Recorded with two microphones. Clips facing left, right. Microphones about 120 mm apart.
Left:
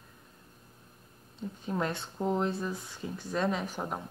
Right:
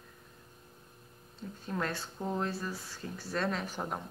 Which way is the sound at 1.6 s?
15° left (ahead or behind).